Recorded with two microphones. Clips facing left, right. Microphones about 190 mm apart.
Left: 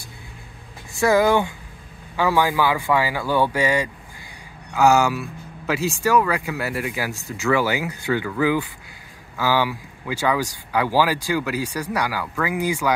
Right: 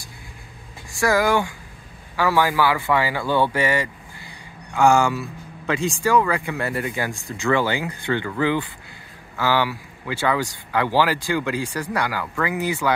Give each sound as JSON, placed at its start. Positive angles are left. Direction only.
{"t": 0.9, "sound": "speech", "side_deg": 20}